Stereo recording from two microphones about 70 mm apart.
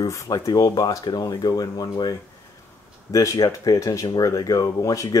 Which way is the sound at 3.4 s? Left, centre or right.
Left.